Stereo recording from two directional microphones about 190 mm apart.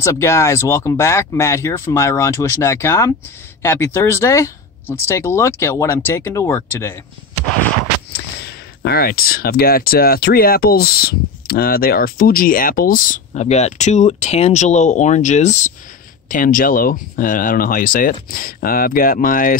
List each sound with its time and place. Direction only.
0.0 s speech: 15° left (ahead or behind)
8.4 s speech: 55° left (ahead or behind)